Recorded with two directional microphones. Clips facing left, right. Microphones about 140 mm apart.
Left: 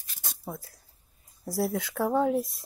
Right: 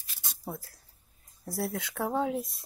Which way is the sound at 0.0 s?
45° left (ahead or behind).